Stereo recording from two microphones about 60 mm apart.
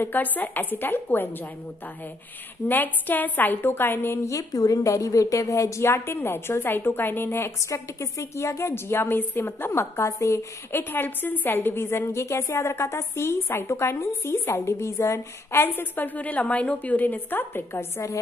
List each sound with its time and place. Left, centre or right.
0.0 s a woman's voice: left
2.7 s a woman's voice: left
4.2 s a woman's voice: left
8.0 s a woman's voice: left
10.7 s a woman's voice: left
17.9 s a woman's voice: left